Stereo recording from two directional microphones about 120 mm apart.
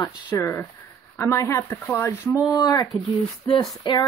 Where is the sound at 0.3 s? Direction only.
25° left (ahead or behind).